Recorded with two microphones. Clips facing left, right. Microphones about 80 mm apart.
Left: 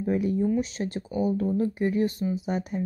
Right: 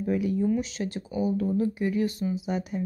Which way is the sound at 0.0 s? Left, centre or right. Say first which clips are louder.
Left 1 dB; left.